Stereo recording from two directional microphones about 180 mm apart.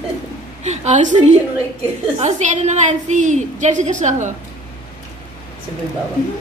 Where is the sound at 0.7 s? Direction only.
40° right (ahead or behind).